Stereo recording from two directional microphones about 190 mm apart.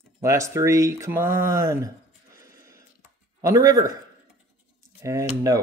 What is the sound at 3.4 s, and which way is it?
Speech, 20° right (ahead or behind).